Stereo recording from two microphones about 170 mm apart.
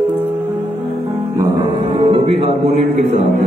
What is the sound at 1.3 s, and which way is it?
Speech, 20° right (ahead or behind).